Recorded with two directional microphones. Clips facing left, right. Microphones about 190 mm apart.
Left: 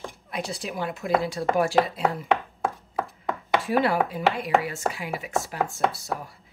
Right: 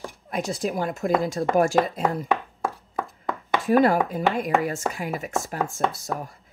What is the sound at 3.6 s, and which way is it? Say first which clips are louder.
Speech: right 6 dB; 45° right (ahead or behind).